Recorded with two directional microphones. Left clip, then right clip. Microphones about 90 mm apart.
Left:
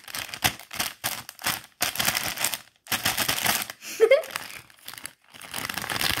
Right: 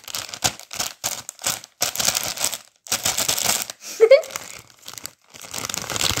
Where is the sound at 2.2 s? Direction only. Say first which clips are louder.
Right 3 dB; centre (ahead or behind).